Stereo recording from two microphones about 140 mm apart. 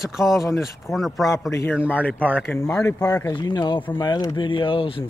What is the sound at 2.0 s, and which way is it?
Speech, 10° left (ahead or behind).